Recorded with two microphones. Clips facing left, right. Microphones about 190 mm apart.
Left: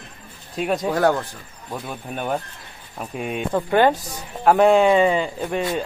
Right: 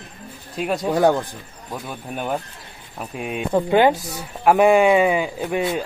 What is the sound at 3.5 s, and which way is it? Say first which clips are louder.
A man's voice: right 2 dB; 15° right (ahead or behind).